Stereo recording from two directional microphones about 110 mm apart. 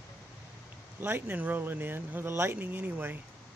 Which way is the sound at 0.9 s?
20° right (ahead or behind).